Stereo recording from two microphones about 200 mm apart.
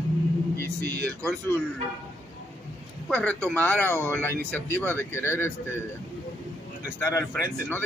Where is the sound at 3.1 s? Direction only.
5° left (ahead or behind).